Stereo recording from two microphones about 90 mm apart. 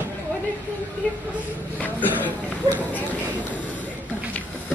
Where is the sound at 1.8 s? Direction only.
20° left (ahead or behind).